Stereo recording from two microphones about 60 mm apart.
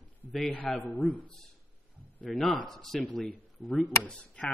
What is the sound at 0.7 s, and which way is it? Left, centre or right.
Speech, left.